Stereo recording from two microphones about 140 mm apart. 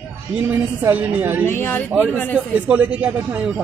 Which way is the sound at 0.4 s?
10° right (ahead or behind).